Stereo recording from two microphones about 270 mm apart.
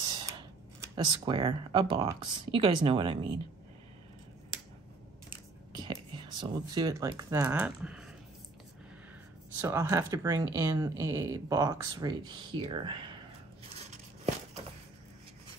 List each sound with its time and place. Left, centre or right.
0.0 s speech: centre
5.7 s speech: centre
9.6 s speech: centre
13.8 s a sound: right